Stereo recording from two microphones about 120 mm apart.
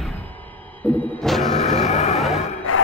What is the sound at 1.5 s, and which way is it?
Vehicle, 60° left (ahead or behind).